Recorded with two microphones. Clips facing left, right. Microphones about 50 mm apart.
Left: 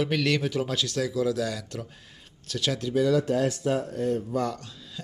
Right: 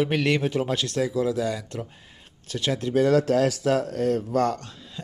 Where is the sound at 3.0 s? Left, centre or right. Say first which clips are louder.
Right 4 dB; right.